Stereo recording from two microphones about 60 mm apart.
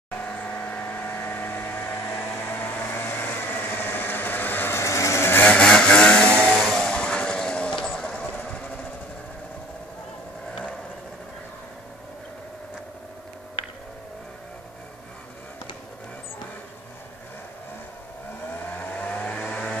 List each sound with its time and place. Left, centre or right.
0.1 s vehicle: left
4.7 s vehicle: left
5.6 s vehicle: centre
6.6 s vehicle: centre
6.9 s a sound: centre
8.0 s vehicle: left
18.8 s vehicle: left